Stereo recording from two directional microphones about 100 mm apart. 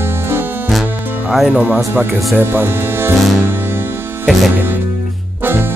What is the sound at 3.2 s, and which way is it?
Music, centre (ahead or behind).